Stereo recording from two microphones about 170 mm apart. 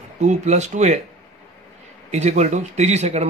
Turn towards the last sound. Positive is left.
turn(degrees=-40)  # may be behind; listen again after turning